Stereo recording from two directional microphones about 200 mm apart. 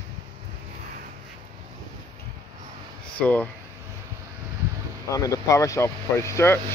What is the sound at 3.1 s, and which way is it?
Speech, 5° left (ahead or behind).